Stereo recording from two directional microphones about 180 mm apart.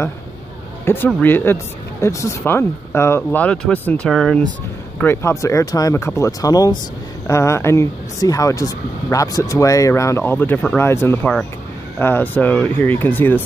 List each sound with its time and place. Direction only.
0.8 s speech: 10° left (ahead or behind)